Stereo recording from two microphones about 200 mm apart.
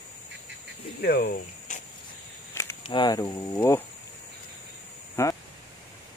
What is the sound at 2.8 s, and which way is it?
Speech, 25° left (ahead or behind).